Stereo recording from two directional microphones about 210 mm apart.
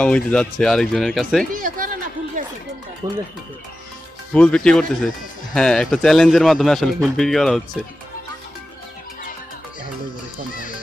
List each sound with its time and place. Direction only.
0.0 s speech: 5° left (ahead or behind)
1.5 s a sound: 40° right (ahead or behind)
3.0 s speech: 20° right (ahead or behind)
4.3 s speech: 5° left (ahead or behind)